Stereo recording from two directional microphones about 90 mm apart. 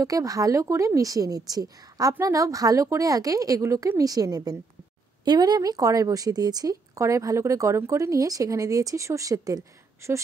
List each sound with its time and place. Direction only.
0.0 s a woman's voice: 40° right (ahead or behind)